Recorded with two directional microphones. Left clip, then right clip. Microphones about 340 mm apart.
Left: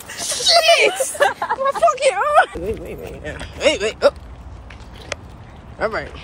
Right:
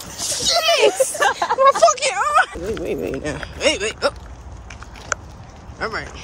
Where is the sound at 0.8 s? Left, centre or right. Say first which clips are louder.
Right 1 dB; centre.